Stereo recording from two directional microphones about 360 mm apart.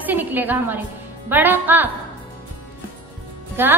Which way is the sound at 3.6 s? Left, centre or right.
Centre.